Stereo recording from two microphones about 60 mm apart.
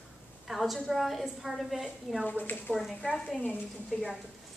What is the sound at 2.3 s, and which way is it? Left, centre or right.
Speech, left.